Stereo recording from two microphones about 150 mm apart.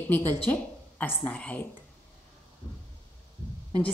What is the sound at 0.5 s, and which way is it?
A woman's voice, 10° left (ahead or behind).